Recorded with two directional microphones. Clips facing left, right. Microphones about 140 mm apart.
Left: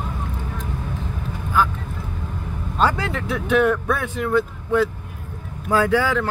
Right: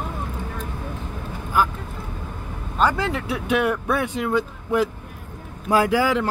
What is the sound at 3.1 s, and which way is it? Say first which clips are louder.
Speech: left 3 dB; 10° right (ahead or behind).